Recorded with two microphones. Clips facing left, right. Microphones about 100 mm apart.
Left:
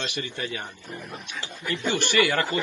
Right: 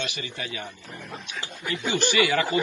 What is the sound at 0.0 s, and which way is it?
Speech, 50° left (ahead or behind).